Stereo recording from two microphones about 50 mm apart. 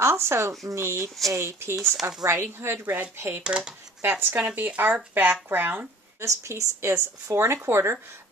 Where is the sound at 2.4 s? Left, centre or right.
Right.